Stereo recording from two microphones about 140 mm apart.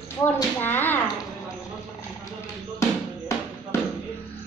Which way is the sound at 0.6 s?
15° left (ahead or behind).